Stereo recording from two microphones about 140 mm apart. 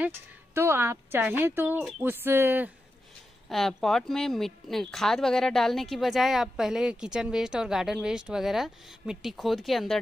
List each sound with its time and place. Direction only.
0.6 s speech: 15° right (ahead or behind)
3.4 s speech: centre (ahead or behind)